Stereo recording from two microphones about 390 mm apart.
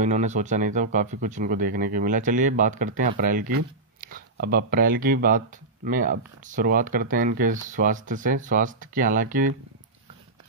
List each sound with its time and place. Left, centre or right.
0.0 s speech: centre